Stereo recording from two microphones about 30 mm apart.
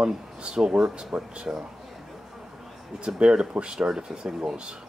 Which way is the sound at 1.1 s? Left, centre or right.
Right.